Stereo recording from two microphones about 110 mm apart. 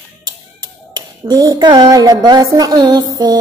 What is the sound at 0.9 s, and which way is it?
Speech, 40° right (ahead or behind).